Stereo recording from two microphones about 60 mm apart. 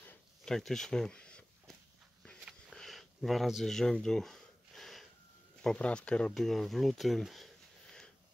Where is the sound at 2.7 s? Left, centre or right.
Centre.